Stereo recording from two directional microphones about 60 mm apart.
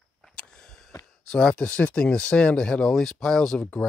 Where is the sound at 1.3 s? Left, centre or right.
Centre.